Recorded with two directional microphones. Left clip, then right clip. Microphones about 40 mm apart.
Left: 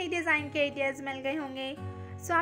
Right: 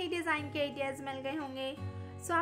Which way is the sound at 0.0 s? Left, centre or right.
Left.